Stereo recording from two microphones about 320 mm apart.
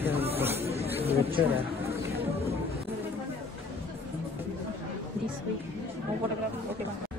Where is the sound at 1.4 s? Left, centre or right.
Centre.